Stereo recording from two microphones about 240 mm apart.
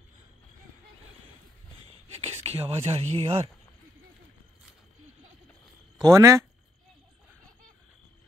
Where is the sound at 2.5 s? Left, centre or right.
Right.